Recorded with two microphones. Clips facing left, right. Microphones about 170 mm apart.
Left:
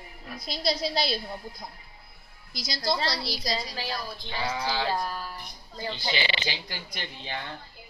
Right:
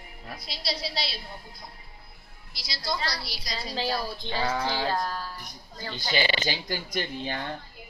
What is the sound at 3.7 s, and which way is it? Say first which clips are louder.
Speech: right 5 dB; 30° right (ahead or behind).